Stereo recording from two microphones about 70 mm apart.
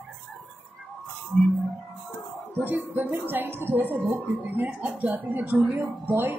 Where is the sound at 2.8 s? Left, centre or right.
Right.